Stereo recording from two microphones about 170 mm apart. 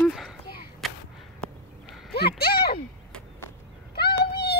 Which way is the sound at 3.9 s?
70° left (ahead or behind).